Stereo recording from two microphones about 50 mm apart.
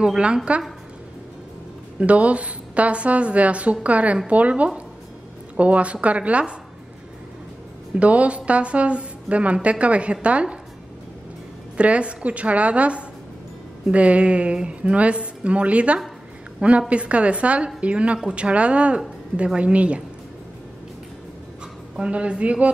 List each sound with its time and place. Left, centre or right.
0.5 s speech: right
2.0 s speech: right
7.9 s speech: right
11.7 s a woman's voice: right
21.9 s speech: right